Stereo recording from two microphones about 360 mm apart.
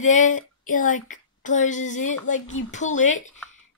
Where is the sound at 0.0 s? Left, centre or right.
Centre.